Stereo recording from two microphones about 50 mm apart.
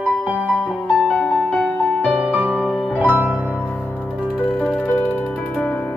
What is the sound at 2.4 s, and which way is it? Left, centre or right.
Music, left.